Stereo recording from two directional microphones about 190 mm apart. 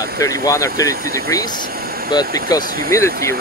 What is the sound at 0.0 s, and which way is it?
Speech, 20° left (ahead or behind).